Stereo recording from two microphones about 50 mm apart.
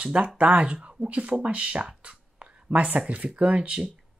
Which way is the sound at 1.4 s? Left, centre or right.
Right.